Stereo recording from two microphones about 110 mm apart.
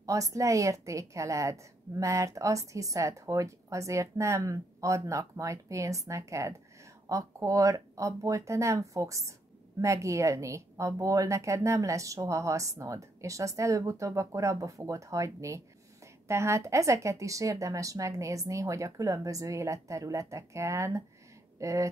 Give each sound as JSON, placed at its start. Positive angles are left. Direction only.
{"t": 0.0, "sound": "a woman's voice", "side_deg": -30}